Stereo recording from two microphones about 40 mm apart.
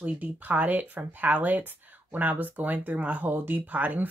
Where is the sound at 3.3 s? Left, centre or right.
Right.